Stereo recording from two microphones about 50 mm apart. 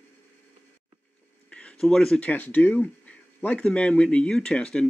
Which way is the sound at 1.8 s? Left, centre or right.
Centre.